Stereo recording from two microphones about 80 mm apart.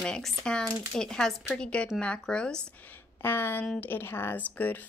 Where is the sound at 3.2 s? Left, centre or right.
Left.